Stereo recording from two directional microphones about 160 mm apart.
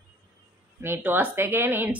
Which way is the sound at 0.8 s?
15° right (ahead or behind).